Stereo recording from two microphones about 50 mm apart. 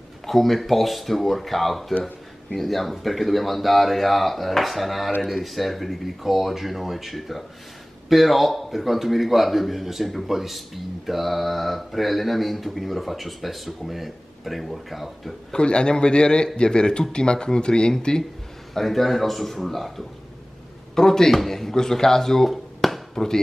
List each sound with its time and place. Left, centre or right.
0.3 s a man's voice: centre
15.5 s a man's voice: centre
18.7 s a man's voice: centre